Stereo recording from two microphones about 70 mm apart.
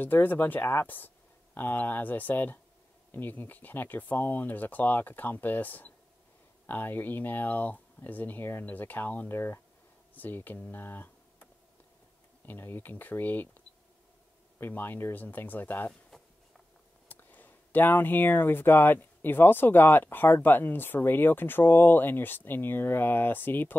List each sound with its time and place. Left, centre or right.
0.0 s speech: left
12.4 s speech: left
14.6 s speech: left
15.9 s a sound: centre
17.1 s speech: left